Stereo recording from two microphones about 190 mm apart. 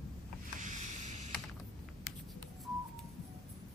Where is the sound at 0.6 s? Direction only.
40° right (ahead or behind).